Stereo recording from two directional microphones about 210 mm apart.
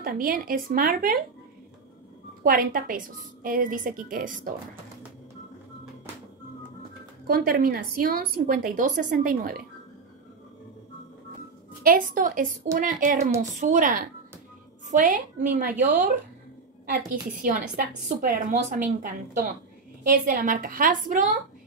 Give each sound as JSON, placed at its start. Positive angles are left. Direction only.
{"t": 0.0, "sound": "a woman's voice", "side_deg": -45}
{"t": 2.4, "sound": "a woman's voice", "side_deg": -40}
{"t": 7.2, "sound": "a woman's voice", "side_deg": -45}
{"t": 11.8, "sound": "a woman's voice", "side_deg": -40}
{"t": 17.4, "sound": "a woman's voice", "side_deg": -40}